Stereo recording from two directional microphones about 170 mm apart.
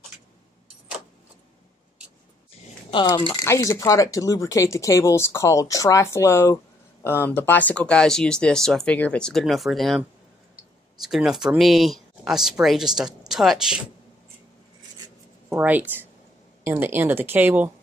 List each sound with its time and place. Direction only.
2.9 s speech: 25° left (ahead or behind); by 13.7 s centre (ahead or behind)
15.5 s a woman's voice: 10° right (ahead or behind)